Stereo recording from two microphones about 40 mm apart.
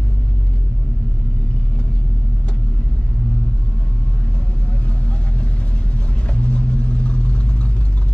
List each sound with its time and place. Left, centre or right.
6.3 s vehicle: left